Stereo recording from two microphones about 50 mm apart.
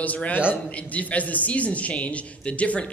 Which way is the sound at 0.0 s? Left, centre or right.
Left.